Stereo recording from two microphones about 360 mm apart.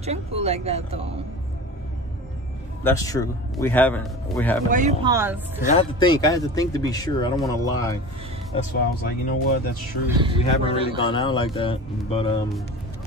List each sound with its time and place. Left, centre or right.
0.0 s speech: centre
2.8 s a man's voice: centre
4.6 s speech: right
5.1 s speech: centre
5.8 s speech: centre
8.5 s speech: left
10.0 s speech: centre
10.6 s speech: centre